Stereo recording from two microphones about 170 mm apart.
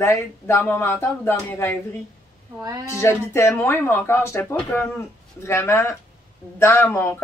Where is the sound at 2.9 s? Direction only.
15° left (ahead or behind).